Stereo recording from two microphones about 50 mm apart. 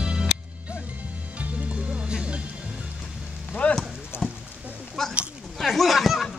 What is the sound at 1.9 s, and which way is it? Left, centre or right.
Music, right.